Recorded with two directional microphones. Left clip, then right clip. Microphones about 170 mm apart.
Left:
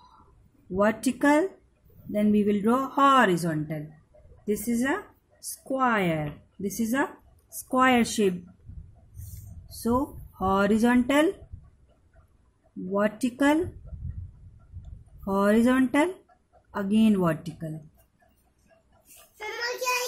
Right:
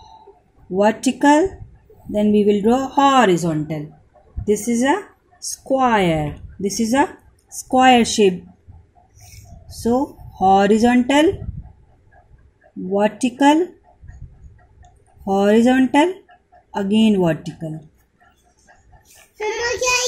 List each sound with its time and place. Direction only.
0.7 s speech: 10° left (ahead or behind)
9.7 s speech: 15° left (ahead or behind)
12.9 s speech: 5° left (ahead or behind)
14.8 s speech: 10° left (ahead or behind)
19.6 s child singing: 50° left (ahead or behind)